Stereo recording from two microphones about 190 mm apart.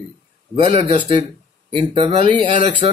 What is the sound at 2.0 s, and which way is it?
Speech, 30° right (ahead or behind).